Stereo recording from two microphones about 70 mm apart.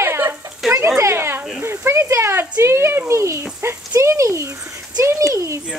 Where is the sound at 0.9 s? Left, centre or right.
Right.